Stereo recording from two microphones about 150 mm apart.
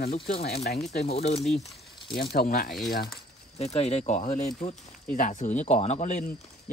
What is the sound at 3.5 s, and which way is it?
Speech, 45° left (ahead or behind).